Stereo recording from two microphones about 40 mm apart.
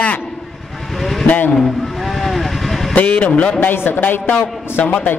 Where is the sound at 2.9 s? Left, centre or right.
Left.